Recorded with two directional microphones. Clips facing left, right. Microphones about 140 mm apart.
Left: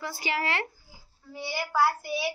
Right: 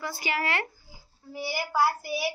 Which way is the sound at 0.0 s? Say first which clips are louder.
Even; 25° left (ahead or behind).